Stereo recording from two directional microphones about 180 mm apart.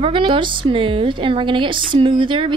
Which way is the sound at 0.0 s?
25° right (ahead or behind).